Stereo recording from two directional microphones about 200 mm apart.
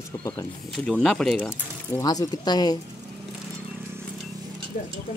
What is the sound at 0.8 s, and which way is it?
Speech, 5° left (ahead or behind).